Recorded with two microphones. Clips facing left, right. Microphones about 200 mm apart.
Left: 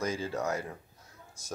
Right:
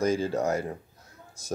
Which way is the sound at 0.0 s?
35° right (ahead or behind).